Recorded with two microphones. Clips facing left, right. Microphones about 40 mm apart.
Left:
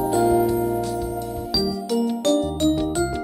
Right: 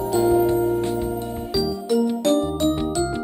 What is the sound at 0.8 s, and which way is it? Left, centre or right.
Music, right.